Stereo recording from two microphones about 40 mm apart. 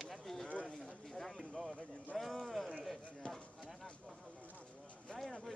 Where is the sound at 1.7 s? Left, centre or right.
Left.